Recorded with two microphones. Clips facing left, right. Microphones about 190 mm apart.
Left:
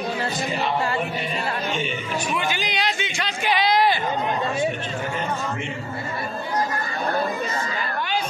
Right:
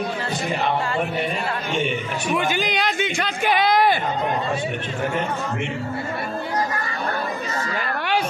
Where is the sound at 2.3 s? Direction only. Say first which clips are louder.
Right 4 dB; 50° right (ahead or behind).